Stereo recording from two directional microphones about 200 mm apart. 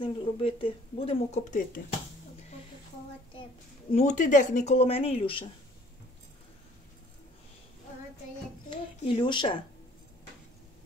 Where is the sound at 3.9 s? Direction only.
40° left (ahead or behind).